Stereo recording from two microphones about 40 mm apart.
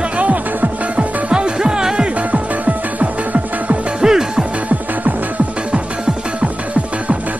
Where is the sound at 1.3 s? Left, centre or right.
Right.